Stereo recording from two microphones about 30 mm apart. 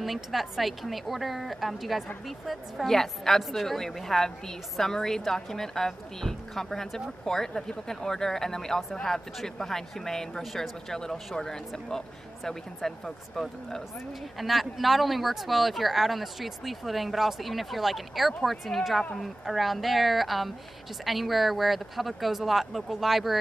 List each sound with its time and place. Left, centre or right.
0.0 s speech: centre
2.9 s a woman's voice: centre
10.4 s speech: centre
10.9 s a woman's voice: centre
14.4 s speech: centre